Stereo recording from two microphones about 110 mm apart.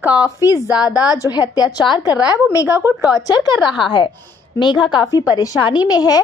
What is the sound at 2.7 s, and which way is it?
Speech, 10° right (ahead or behind).